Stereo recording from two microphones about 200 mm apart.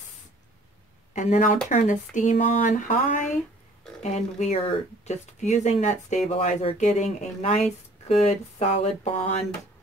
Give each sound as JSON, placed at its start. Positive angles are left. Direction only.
{"t": 1.1, "sound": "speech", "side_deg": 40}